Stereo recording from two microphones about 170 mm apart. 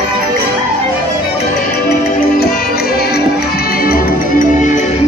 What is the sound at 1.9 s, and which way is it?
Music, 65° left (ahead or behind).